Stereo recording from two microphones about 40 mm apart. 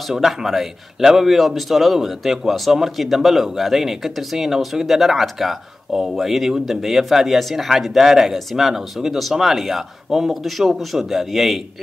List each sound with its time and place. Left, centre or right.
0.1 s a man's voice: centre